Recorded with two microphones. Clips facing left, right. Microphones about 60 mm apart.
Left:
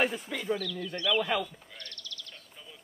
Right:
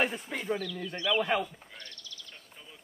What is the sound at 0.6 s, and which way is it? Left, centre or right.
Speech, centre.